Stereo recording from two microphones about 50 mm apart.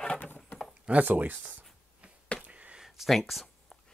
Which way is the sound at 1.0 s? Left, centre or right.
Right.